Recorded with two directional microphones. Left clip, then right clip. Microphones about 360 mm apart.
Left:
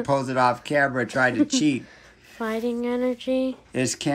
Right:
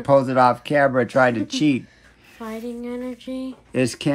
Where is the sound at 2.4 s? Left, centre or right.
Left.